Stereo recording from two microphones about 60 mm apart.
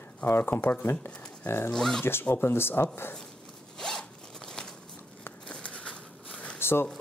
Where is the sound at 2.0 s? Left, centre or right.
Left.